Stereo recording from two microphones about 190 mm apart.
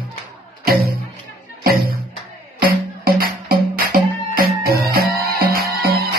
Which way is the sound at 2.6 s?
50° right (ahead or behind).